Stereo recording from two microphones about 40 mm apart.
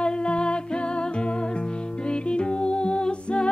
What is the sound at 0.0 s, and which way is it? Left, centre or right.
Music, left.